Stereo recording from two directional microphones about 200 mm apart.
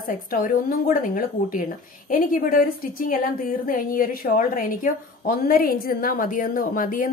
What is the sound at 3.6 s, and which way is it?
A woman's voice, 45° left (ahead or behind).